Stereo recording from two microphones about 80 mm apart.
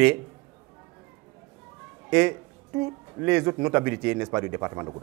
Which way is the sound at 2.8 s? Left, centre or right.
Right.